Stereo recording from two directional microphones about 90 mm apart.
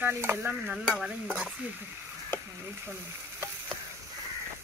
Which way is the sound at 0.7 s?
5° right (ahead or behind).